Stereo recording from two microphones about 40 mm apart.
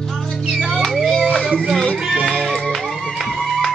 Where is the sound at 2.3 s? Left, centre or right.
Centre.